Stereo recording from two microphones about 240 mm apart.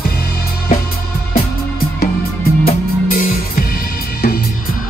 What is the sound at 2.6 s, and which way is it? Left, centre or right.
Music, left.